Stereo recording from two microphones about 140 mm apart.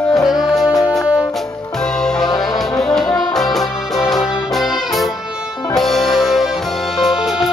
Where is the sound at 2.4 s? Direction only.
5° left (ahead or behind).